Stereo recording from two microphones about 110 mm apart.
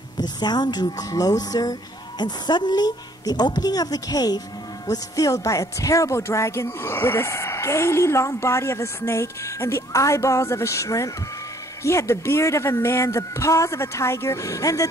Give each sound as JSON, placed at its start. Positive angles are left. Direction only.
{"t": 0.2, "sound": "speech", "side_deg": 40}